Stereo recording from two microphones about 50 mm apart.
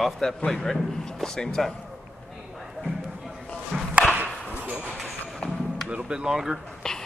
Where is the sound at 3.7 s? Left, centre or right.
Right.